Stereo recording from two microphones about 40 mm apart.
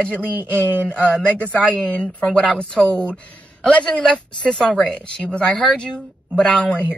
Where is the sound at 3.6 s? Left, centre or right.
Left.